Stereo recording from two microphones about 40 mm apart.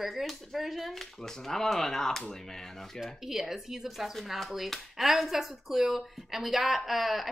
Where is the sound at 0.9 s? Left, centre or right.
Centre.